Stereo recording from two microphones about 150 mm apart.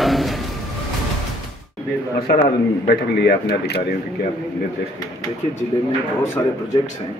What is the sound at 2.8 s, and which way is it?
Speech, 90° left.